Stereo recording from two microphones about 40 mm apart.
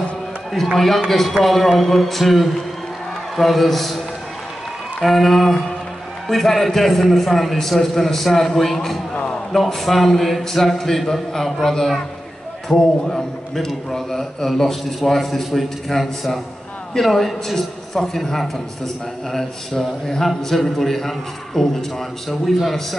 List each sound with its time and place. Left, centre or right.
0.7 s a man's voice: centre
5.0 s a man's voice: centre
9.1 s a sound: left
9.5 s a man's voice: centre